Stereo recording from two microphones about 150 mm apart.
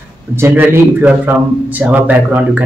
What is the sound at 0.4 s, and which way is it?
A man's voice, 10° right (ahead or behind).